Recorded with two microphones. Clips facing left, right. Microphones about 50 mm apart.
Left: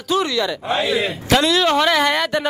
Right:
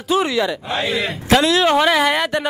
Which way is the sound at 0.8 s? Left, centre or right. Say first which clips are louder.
Even; right.